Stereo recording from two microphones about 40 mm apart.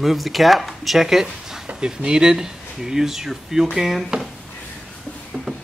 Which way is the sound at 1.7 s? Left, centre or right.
Right.